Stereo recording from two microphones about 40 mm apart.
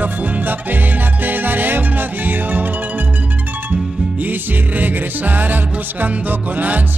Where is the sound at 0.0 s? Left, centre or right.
Right.